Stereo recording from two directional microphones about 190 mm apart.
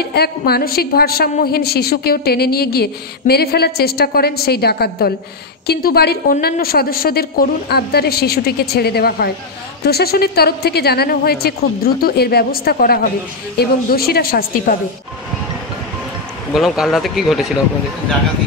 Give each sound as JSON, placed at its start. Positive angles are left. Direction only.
{"t": 0.0, "sound": "a woman's voice", "side_deg": 55}
{"t": 16.5, "sound": "speech", "side_deg": 0}